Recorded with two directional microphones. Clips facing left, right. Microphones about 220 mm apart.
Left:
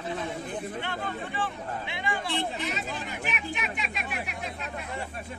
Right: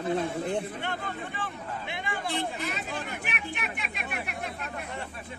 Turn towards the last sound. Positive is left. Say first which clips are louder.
# even
turn(degrees=-60)  # may be behind; listen again after turning